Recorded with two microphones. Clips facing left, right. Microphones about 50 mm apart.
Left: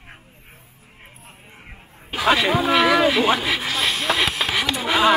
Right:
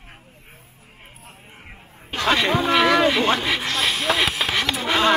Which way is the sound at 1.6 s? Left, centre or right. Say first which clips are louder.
Even; centre.